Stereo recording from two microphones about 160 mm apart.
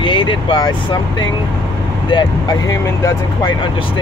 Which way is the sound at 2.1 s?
20° left (ahead or behind).